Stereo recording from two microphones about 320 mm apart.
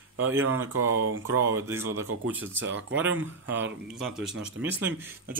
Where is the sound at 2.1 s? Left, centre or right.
Right.